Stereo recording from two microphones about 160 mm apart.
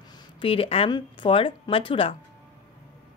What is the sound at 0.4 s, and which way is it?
A woman's voice, 35° left (ahead or behind).